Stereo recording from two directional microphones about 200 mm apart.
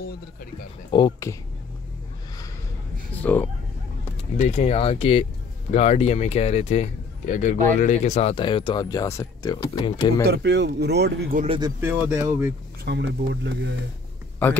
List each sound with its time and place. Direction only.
0.9 s speech: 20° left (ahead or behind)
3.2 s speech: 10° left (ahead or behind)
4.4 s speech: 30° left (ahead or behind)
10.2 s speech: 55° right (ahead or behind)
11.4 s speech: 25° right (ahead or behind)
11.8 s speech: 10° right (ahead or behind)
12.8 s speech: 55° right (ahead or behind)